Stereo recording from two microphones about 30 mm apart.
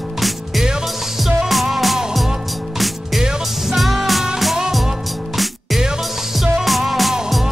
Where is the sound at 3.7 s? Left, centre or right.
Centre.